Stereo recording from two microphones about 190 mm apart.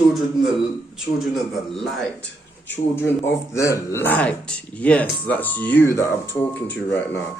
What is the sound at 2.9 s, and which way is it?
Speech, 15° left (ahead or behind).